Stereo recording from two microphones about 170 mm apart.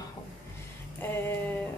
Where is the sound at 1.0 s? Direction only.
10° left (ahead or behind).